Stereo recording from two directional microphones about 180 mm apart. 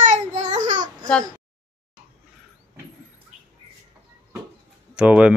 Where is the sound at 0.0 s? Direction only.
40° right (ahead or behind).